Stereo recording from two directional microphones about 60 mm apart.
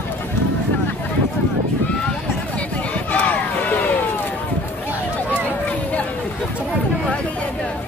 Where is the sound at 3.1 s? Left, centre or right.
Left.